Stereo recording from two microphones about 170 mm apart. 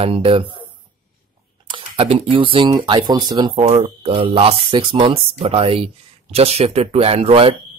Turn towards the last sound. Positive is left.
turn(degrees=-35)  # may be behind; listen again after turning